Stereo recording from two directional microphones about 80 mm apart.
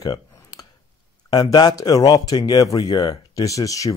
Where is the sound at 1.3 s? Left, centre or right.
Left.